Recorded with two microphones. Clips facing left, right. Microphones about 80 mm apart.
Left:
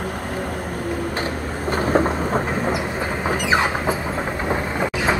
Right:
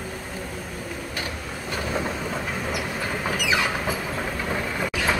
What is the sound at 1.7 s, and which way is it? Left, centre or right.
Vehicle, left.